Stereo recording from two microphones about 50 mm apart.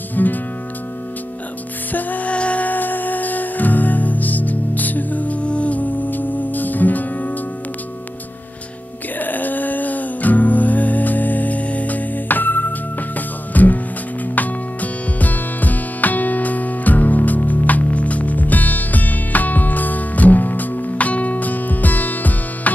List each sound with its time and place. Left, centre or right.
0.1 s music: left
1.9 s music: left
9.2 s music: left